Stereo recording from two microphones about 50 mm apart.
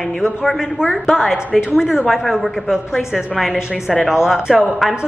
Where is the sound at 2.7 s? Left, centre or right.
Centre.